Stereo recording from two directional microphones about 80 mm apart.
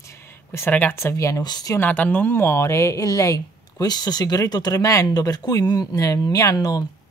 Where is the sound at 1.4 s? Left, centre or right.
Left.